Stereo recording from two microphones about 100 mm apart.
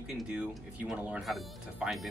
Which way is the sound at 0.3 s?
10° right (ahead or behind).